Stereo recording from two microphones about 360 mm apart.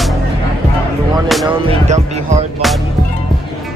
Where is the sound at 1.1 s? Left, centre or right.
Centre.